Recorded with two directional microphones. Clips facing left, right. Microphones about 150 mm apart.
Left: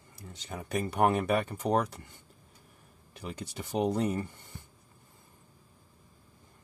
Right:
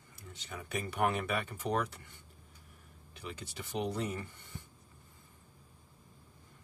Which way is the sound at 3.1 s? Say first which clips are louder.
Left 5 dB; 45° left (ahead or behind).